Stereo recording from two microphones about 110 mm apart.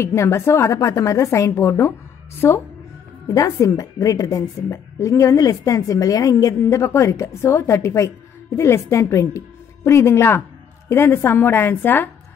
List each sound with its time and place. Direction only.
0.0 s a woman's voice: 25° left (ahead or behind)
3.3 s a woman's voice: 35° left (ahead or behind); by 12.1 s 15° left (ahead or behind)